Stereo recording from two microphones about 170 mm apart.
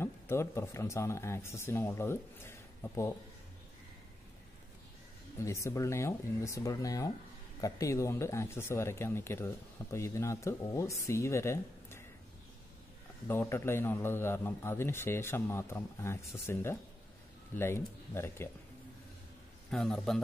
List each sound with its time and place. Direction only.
0.0 s speech: 15° left (ahead or behind)
5.4 s a man's voice: 15° left (ahead or behind)
13.3 s a man's voice: 15° left (ahead or behind)
19.7 s a man's voice: centre (ahead or behind)